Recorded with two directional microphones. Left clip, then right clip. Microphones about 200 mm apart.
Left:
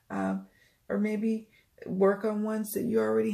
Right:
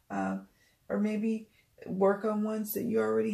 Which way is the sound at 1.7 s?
35° left (ahead or behind).